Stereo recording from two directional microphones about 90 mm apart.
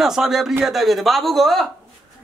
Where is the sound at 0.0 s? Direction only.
5° right (ahead or behind).